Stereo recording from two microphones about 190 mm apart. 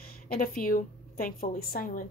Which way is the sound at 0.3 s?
50° left (ahead or behind).